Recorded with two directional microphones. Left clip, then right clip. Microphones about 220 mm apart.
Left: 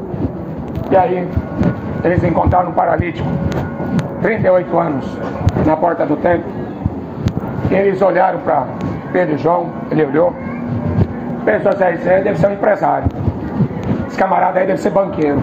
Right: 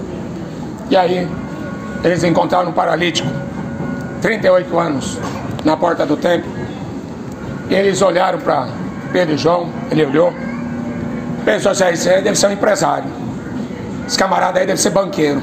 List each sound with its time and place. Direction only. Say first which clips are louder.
2.0 s a man's voice: right 1 dB; 20° right (ahead or behind)
4.2 s a man's voice: even; 15° right (ahead or behind)
7.7 s a man's voice: even; 20° right (ahead or behind)
11.4 s a man's voice: even; 20° right (ahead or behind)
14.1 s a man's voice: even; 20° right (ahead or behind)